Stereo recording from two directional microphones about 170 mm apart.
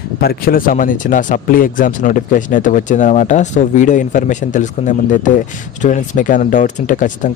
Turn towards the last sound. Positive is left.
turn(degrees=50)  # may be behind; listen again after turning